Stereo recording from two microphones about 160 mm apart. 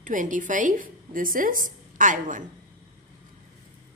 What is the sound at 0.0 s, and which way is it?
Speech, 55° right (ahead or behind).